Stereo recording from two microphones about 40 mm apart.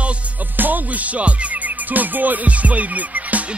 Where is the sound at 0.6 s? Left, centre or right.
Right.